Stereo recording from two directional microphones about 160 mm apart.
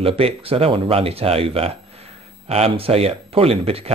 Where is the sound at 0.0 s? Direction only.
35° right (ahead or behind).